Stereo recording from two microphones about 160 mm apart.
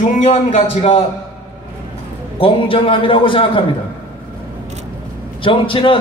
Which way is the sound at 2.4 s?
35° left (ahead or behind).